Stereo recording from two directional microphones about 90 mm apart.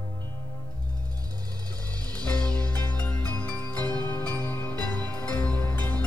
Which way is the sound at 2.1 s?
15° left (ahead or behind).